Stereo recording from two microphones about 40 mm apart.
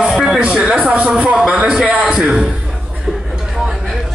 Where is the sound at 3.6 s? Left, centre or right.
Centre.